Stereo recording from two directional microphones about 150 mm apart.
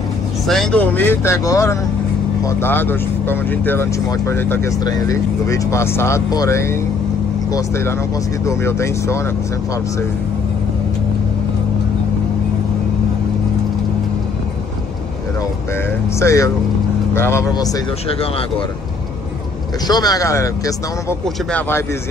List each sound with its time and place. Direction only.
0.5 s speech: 5° left (ahead or behind); by 9.2 s 20° left (ahead or behind)
16.2 s speech: 20° left (ahead or behind)
19.9 s speech: 25° left (ahead or behind)